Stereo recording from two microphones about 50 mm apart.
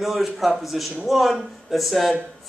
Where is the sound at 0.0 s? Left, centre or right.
Centre.